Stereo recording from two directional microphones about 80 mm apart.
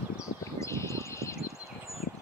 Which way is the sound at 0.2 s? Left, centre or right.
Left.